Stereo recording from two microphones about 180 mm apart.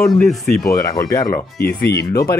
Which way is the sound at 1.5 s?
60° left (ahead or behind).